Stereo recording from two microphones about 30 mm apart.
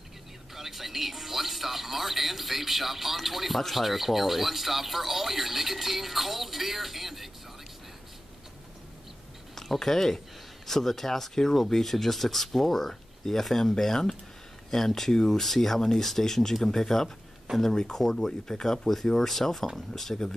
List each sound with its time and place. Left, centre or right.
0.6 s speech: centre
9.8 s speech: centre